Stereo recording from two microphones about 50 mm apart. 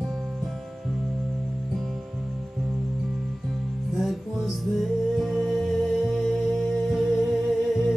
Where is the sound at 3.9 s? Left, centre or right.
Centre.